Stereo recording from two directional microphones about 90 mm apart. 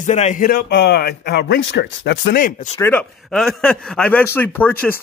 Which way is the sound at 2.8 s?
20° left (ahead or behind).